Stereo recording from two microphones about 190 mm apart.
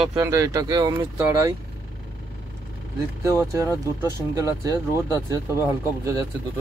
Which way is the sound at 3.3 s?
15° right (ahead or behind).